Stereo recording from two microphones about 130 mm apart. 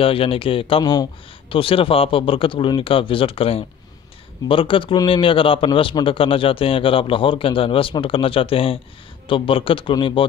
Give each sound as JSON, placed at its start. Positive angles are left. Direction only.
{"t": 0.0, "sound": "a man's voice", "side_deg": 45}